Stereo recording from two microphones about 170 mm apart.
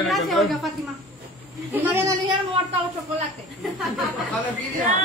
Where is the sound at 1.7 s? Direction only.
15° right (ahead or behind).